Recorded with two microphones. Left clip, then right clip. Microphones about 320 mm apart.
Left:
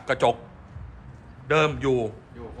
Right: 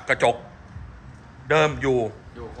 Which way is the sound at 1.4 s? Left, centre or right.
Centre.